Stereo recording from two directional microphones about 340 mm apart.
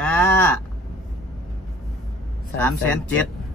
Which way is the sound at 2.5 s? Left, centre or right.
Centre.